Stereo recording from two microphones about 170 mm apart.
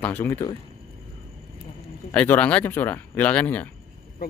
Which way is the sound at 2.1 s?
10° left (ahead or behind).